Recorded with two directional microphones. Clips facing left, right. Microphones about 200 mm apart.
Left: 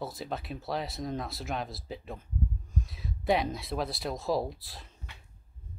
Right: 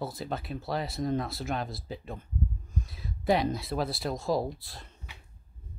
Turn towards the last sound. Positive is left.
turn(degrees=0)  # may be behind; listen again after turning